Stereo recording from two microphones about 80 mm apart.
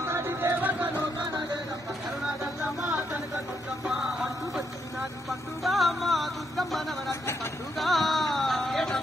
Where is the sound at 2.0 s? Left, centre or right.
Centre.